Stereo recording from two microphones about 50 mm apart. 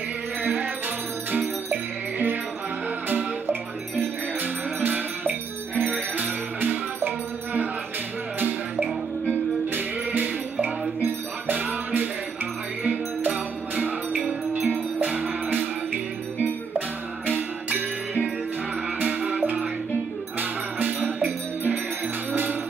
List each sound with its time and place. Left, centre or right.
0.4 s music: right
3.1 s music: right
18.9 s music: right